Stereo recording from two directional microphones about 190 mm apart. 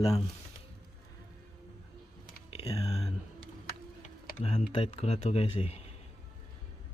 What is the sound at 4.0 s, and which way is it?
Tick-tock, 40° left (ahead or behind).